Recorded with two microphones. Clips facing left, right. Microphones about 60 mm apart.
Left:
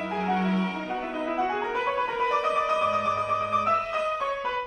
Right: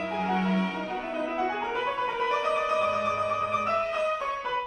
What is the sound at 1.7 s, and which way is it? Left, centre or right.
Music, centre.